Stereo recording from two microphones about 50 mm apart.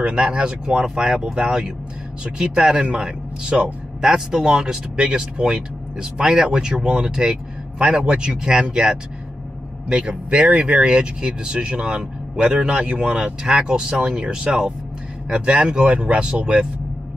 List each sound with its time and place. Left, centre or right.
0.0 s speech: centre